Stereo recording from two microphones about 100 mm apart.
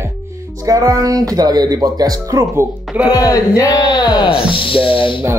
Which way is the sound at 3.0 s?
35° left (ahead or behind).